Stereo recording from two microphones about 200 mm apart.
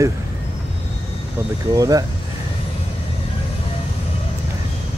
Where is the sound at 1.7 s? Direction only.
15° right (ahead or behind).